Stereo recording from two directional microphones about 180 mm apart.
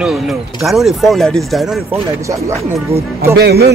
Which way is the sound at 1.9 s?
15° right (ahead or behind).